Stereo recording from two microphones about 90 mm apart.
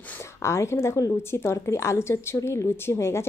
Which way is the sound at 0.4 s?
30° left (ahead or behind).